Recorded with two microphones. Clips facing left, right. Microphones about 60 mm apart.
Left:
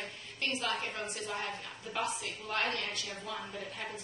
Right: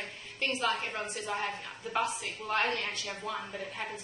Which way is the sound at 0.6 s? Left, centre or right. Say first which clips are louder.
Right 4 dB; centre.